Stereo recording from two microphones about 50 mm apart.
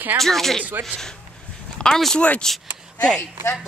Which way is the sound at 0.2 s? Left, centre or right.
Centre.